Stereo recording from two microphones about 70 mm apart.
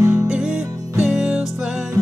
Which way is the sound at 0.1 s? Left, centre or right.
Centre.